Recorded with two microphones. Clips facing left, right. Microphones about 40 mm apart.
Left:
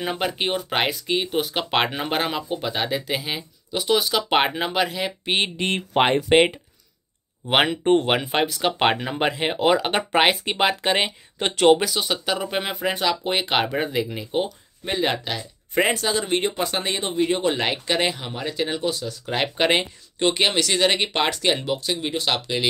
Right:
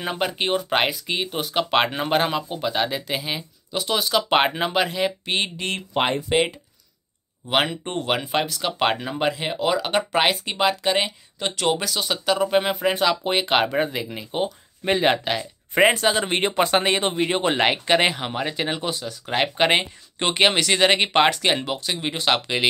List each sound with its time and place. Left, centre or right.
0.0 s speech: centre
5.2 s speech: centre
6.1 s speech: left
7.4 s speech: left
11.8 s speech: centre
14.9 s speech: right
20.2 s speech: right